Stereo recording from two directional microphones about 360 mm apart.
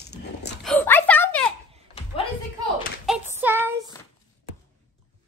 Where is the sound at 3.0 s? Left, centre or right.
Centre.